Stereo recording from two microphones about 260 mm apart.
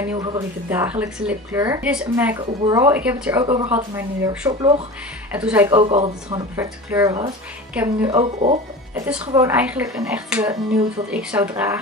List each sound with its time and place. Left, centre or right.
0.0 s a woman's voice: centre
3.4 s a woman's voice: centre
3.7 s a woman's voice: centre; by 6.4 s right
6.5 s a woman's voice: centre
8.2 s speech: right
8.9 s a woman's voice: centre